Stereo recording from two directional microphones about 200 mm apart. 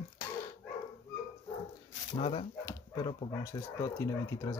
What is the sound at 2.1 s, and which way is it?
Speech, 30° left (ahead or behind).